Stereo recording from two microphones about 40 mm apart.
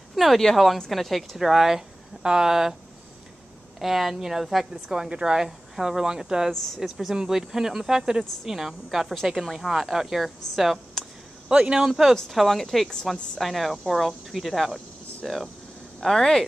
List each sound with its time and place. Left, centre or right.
0.1 s a woman's voice: centre
1.4 s speech: centre
3.8 s speech: centre
6.5 s speech: centre
6.8 s speech: centre
11.4 s speech: right
12.3 s speech: centre